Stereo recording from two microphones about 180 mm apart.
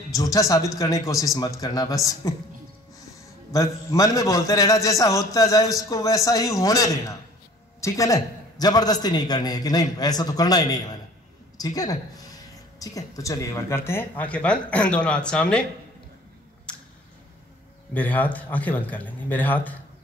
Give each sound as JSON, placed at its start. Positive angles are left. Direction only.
{"t": 0.1, "sound": "a man's voice", "side_deg": 20}
{"t": 3.5, "sound": "a man's voice", "side_deg": 20}
{"t": 17.9, "sound": "speech", "side_deg": 10}